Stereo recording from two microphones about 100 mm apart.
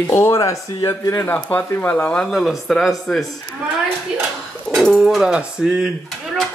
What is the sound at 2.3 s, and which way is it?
Speech, 5° left (ahead or behind).